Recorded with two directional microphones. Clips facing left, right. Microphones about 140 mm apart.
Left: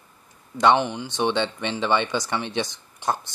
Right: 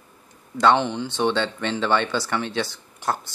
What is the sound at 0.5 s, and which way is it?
Speech, 15° left (ahead or behind).